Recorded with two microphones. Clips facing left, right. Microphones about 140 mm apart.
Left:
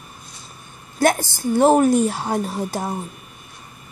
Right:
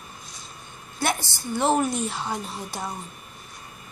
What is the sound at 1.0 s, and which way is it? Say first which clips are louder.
A woman's voice: left 9 dB; 45° left (ahead or behind).